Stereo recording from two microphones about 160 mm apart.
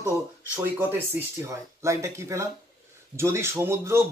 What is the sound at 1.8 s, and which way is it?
Speech, 15° right (ahead or behind).